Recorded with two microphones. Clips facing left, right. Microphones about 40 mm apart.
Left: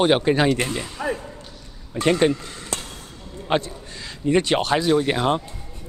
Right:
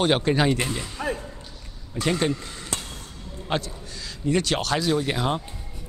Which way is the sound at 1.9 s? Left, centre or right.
Left.